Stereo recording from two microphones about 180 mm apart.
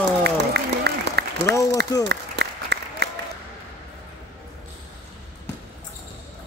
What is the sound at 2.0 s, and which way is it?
Applause, 70° right (ahead or behind).